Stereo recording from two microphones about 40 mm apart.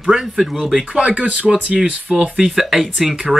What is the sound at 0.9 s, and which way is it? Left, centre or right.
Speech, right.